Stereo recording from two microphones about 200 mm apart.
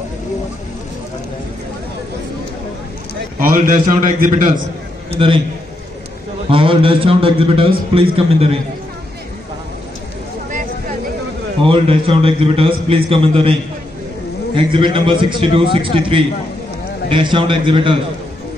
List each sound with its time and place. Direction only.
3.3 s a man's voice: 45° right (ahead or behind)
5.1 s a man's voice: 25° right (ahead or behind)
6.5 s a man's voice: 25° right (ahead or behind)
11.6 s a man's voice: 25° right (ahead or behind)